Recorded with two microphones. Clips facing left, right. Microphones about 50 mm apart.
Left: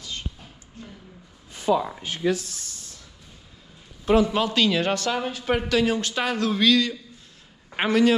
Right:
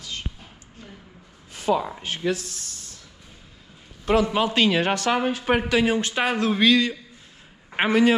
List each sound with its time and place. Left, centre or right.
1.7 s speech: right
4.0 s a sound: right
4.3 s a man's voice: centre
4.6 s a man's voice: right